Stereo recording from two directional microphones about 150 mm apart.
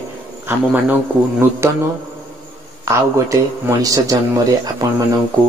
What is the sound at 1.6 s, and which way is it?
Speech, 15° right (ahead or behind).